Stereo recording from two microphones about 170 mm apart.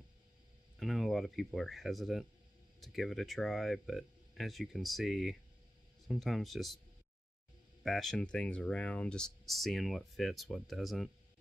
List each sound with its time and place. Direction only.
0.7 s speech: centre (ahead or behind)
7.8 s speech: centre (ahead or behind)